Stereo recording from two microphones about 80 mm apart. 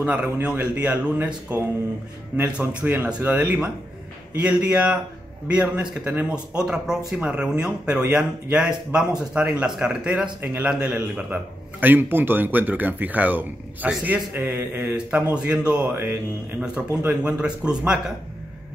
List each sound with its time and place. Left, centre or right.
0.0 s speech: centre
11.8 s speech: right
15.9 s speech: right
16.5 s speech: centre